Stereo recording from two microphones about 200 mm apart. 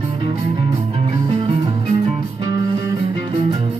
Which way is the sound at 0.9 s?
25° right (ahead or behind).